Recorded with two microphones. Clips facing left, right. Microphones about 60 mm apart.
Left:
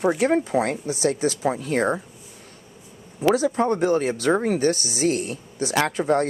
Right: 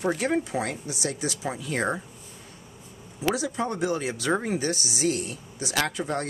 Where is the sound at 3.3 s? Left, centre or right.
Left.